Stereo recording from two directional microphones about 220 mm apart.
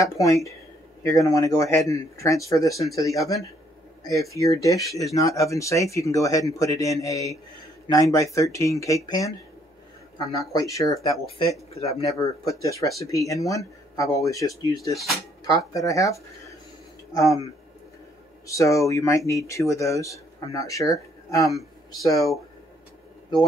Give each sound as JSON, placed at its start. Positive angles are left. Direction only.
{"t": 0.0, "sound": "speech", "side_deg": 15}
{"t": 11.1, "sound": "speech", "side_deg": 25}
{"t": 12.0, "sound": "speech", "side_deg": 15}
{"t": 18.5, "sound": "speech", "side_deg": 15}